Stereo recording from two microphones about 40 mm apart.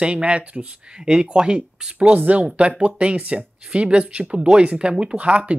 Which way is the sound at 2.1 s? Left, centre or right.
Right.